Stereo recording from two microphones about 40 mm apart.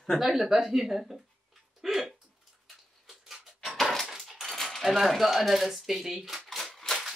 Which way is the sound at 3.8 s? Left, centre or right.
Centre.